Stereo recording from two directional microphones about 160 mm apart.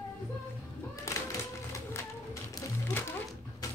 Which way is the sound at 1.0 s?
20° left (ahead or behind).